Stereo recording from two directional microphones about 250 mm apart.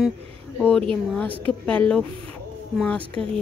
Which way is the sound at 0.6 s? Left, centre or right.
Centre.